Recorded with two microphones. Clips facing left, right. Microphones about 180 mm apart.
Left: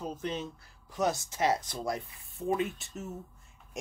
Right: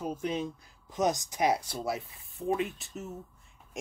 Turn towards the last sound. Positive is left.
turn(degrees=0)  # may be behind; listen again after turning